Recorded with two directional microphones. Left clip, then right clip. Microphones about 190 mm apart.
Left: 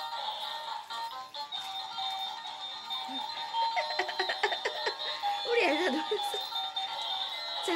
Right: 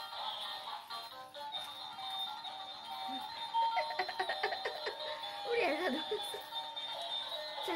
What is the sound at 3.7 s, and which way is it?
Alarm clock, 20° left (ahead or behind).